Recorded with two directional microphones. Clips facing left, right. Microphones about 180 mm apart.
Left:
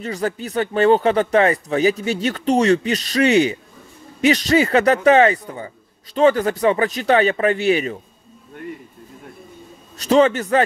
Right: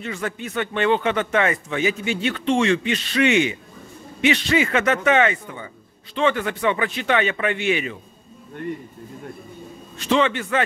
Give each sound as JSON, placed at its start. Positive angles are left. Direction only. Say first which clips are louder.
{"t": 0.0, "sound": "speech", "louder": "left 4 dB", "side_deg": 35}
{"t": 9.9, "sound": "speech", "louder": "left 5 dB", "side_deg": 40}